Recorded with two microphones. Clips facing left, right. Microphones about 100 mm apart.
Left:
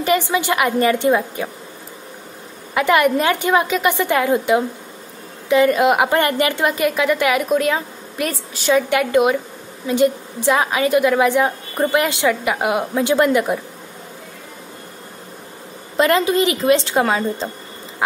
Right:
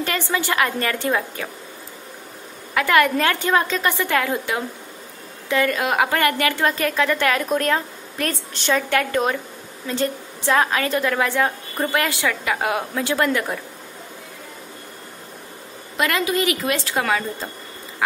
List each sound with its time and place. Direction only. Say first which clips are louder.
0.0 s a woman's voice: left 6 dB; 15° left (ahead or behind)
2.7 s a woman's voice: left 2 dB; 20° left (ahead or behind)
16.0 s a woman's voice: left 6 dB; 30° left (ahead or behind)